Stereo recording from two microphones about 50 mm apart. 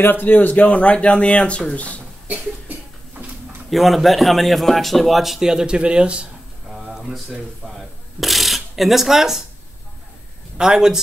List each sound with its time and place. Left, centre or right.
0.0 s speech: left
3.7 s a man's voice: centre; by 6.2 s right
6.7 s a sound: centre
7.6 s speech: centre
10.6 s speech: centre